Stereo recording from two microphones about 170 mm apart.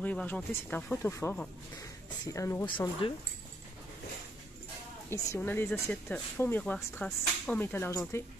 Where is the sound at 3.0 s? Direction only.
30° left (ahead or behind).